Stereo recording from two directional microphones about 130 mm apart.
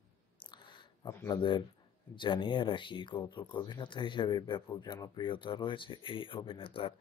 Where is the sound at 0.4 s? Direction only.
35° left (ahead or behind).